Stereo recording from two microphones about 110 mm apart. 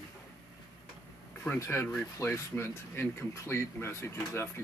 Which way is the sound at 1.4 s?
25° left (ahead or behind).